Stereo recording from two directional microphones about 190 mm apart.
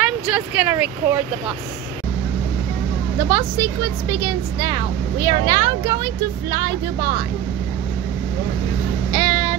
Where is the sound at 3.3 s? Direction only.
20° right (ahead or behind).